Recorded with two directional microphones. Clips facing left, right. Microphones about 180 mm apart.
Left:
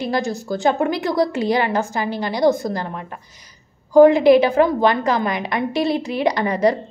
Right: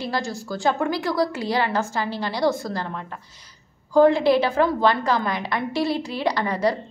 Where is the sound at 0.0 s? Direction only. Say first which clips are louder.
Left 5 dB; 20° left (ahead or behind).